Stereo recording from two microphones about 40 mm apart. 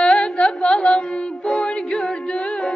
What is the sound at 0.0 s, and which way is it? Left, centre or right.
Music, left.